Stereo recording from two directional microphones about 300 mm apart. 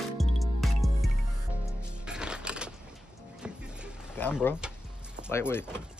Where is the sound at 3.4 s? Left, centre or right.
Centre.